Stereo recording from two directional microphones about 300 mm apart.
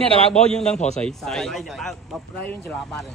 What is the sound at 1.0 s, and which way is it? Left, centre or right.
Speech, centre.